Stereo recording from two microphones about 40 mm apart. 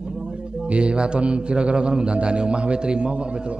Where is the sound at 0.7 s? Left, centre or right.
Right.